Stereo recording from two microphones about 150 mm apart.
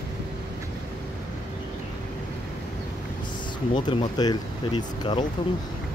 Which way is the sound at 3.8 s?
30° left (ahead or behind).